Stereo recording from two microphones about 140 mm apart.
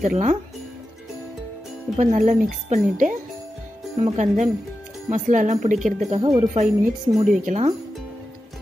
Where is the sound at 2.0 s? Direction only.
60° right (ahead or behind).